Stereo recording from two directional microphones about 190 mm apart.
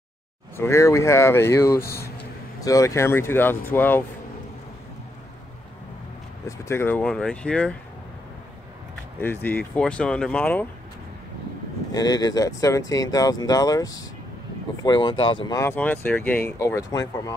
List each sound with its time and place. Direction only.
0.6 s speech: 15° left (ahead or behind)
6.4 s speech: 15° left (ahead or behind)
9.2 s speech: 10° left (ahead or behind)
11.9 s speech: 20° left (ahead or behind)